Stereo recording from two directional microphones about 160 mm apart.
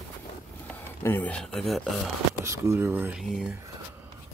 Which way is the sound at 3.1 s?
5° right (ahead or behind).